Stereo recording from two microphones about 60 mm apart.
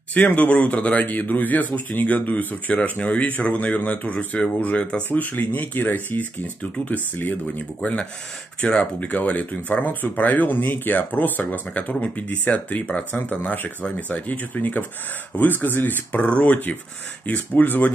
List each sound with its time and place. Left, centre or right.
0.1 s speech: left